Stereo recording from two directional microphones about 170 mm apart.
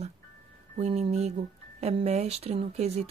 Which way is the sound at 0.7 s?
40° right (ahead or behind).